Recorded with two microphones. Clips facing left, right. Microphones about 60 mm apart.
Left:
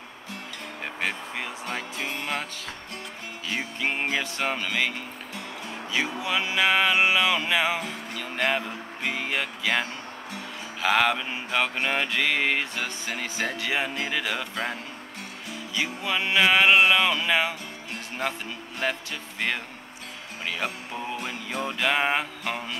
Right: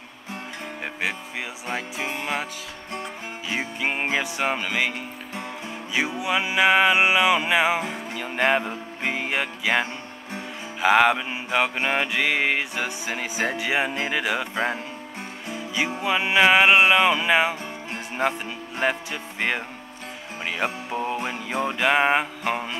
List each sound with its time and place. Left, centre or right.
1.7 s music: centre
3.4 s music: centre
5.9 s music: centre
20.4 s music: right